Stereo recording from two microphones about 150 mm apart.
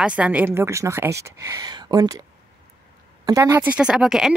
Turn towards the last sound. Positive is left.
turn(degrees=-5)  # may be behind; listen again after turning